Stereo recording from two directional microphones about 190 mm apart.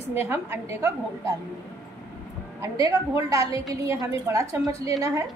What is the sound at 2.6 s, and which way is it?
A woman's voice, 15° right (ahead or behind).